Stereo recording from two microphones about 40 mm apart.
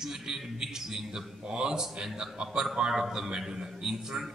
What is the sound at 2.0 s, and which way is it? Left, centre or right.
Speech, centre.